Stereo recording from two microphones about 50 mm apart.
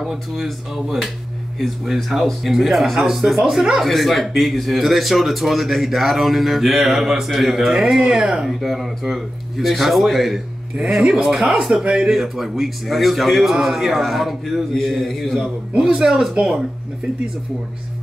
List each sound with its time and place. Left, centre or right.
0.0 s speech: centre
2.0 s speech: centre
3.8 s speech: centre
8.5 s speech: centre
11.0 s speech: centre
12.1 s speech: centre
15.7 s speech: centre